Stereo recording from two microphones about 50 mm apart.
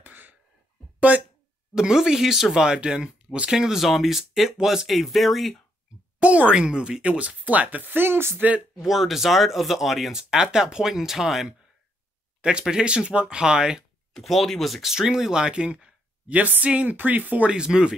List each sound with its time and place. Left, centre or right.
0.0 s a sound: right
0.9 s speech: right
1.8 s speech: centre
6.2 s speech: right
6.5 s speech: centre; by 8.4 s right
8.4 s speech: right
8.8 s speech: centre
10.1 s speech: centre
12.4 s speech: centre
14.1 s speech: centre; by 17.5 s right
17.5 s speech: centre